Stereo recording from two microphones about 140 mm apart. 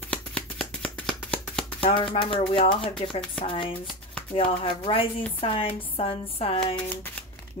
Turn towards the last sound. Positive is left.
turn(degrees=10)  # may be behind; listen again after turning